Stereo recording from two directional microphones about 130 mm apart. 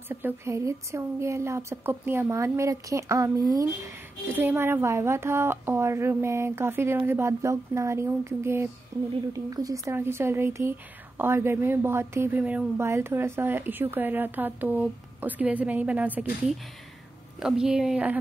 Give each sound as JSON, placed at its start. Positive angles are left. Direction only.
{"t": 0.1, "sound": "a woman's voice", "side_deg": -15}
{"t": 4.3, "sound": "a woman's voice", "side_deg": -15}